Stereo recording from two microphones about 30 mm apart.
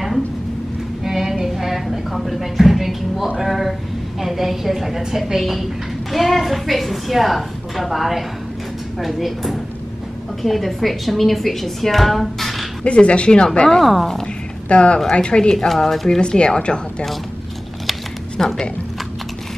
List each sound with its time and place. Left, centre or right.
1.0 s a sound: centre
4.2 s a woman's voice: centre
12.8 s speech: left
14.2 s a sound: left
15.0 s speech: left
15.5 s speech: centre
16.2 s speech: left
18.4 s speech: centre